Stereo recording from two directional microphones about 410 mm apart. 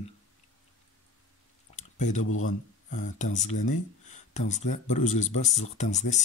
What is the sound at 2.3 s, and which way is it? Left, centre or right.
Speech, left.